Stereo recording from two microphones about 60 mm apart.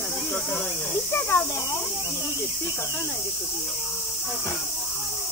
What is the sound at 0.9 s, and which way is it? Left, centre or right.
Speech, left.